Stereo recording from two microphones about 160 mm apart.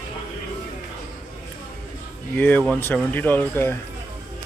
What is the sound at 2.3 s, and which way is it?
Speech, 10° left (ahead or behind).